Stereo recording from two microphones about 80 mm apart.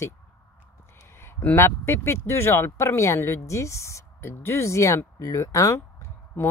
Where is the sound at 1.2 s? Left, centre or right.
Left.